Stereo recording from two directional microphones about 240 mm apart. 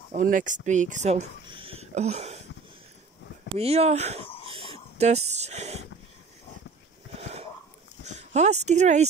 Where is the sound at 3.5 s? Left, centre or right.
Right.